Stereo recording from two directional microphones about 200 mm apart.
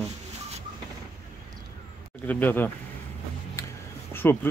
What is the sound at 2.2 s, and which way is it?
Speech, 10° left (ahead or behind).